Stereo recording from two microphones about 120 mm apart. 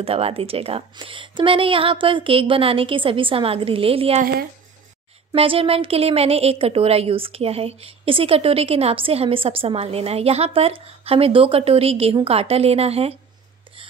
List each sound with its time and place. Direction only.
0.0 s a woman's voice: 55° right (ahead or behind)
5.3 s a woman's voice: 50° right (ahead or behind)